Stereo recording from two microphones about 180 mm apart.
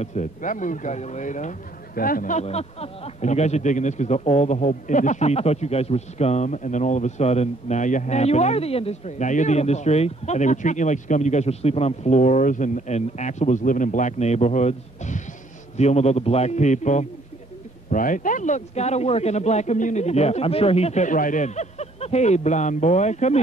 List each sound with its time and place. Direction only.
0.0 s speech: 40° left (ahead or behind)